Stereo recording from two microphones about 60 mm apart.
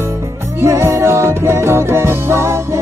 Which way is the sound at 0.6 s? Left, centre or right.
Right.